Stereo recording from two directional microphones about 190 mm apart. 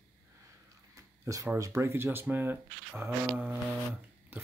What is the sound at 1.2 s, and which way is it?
Speech, 15° right (ahead or behind).